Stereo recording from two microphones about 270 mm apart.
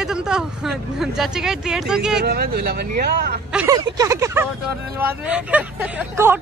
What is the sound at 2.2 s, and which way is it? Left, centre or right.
Speech, right.